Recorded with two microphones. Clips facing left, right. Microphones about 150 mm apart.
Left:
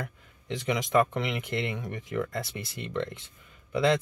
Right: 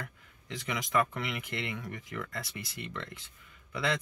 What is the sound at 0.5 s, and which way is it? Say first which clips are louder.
Speech: left 6 dB; 25° left (ahead or behind).